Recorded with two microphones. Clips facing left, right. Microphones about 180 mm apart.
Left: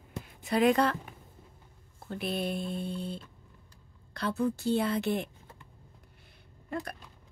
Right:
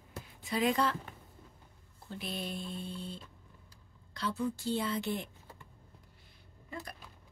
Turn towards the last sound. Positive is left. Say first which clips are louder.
# left 8 dB
turn(degrees=65)  # may be behind; listen again after turning